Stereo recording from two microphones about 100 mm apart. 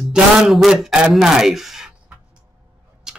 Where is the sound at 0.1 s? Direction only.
Centre (ahead or behind).